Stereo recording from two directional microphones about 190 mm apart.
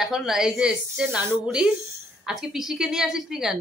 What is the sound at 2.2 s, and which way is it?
Speech, centre (ahead or behind).